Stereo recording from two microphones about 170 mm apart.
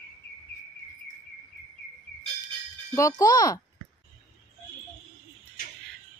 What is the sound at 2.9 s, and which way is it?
Speech, 20° left (ahead or behind).